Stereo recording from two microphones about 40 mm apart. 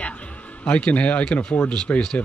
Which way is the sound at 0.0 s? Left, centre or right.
Left.